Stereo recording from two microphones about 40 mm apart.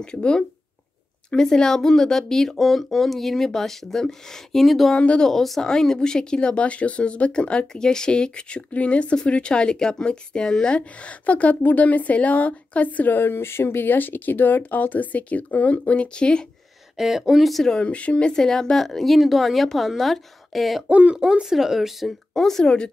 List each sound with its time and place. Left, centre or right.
0.0 s speech: left; by 4.9 s centre
4.9 s speech: left
5.2 s speech: centre
11.1 s a woman's voice: left
13.1 s speech: left
16.2 s speech: left
16.9 s speech: centre
17.7 s speech: left
18.3 s a woman's voice: centre
20.9 s speech: right
21.2 s speech: centre
21.5 s speech: centre
22.3 s speech: centre